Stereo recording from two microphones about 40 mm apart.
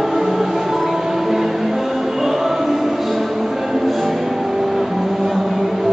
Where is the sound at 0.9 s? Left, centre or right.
Centre.